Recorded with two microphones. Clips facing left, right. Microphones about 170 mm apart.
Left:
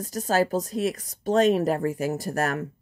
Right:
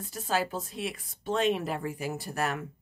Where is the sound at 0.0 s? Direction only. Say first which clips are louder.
Left 7 dB; 40° left (ahead or behind).